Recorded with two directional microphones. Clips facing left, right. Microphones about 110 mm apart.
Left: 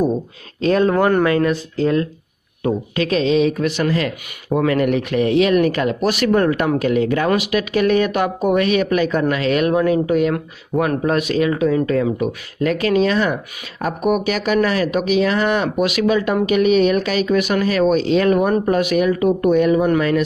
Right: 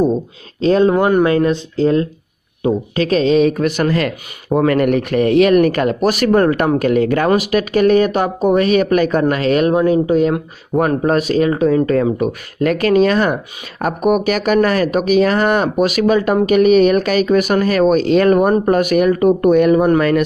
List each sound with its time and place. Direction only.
0.0 s a sound: 25° right (ahead or behind)
0.9 s speech: 15° right (ahead or behind)
1.2 s speech: 25° right (ahead or behind)
3.0 s speech: 40° right (ahead or behind)
9.8 s speech: 25° right (ahead or behind); by 20.2 s 55° right (ahead or behind)